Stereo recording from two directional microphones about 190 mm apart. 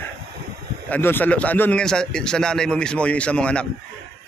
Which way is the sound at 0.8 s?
10° left (ahead or behind).